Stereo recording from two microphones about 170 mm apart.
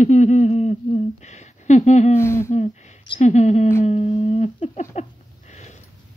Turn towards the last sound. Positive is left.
turn(degrees=45)  # may be behind; listen again after turning